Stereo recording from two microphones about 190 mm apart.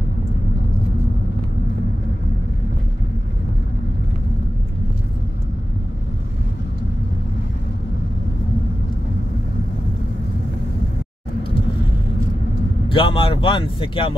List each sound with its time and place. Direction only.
12.8 s speech: 25° left (ahead or behind)